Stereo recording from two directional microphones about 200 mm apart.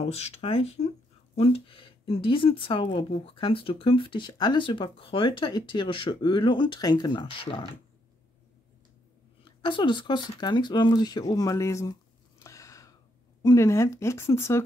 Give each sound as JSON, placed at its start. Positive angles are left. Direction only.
{"t": 0.0, "sound": "speech", "side_deg": 30}
{"t": 9.4, "sound": "speech", "side_deg": 25}
{"t": 12.4, "sound": "a sound", "side_deg": 15}
{"t": 13.4, "sound": "speech", "side_deg": 15}